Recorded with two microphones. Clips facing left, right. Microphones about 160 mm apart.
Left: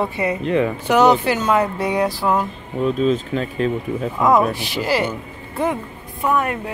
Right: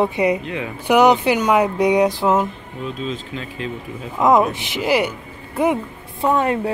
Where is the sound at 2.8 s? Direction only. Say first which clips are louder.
Left 9 dB; 45° left (ahead or behind).